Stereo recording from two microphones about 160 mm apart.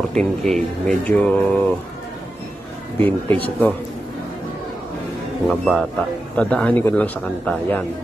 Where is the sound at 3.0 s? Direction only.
10° left (ahead or behind).